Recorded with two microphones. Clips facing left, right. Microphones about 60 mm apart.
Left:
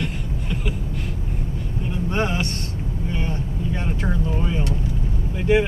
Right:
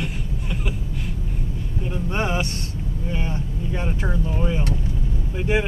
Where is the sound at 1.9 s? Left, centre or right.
Centre.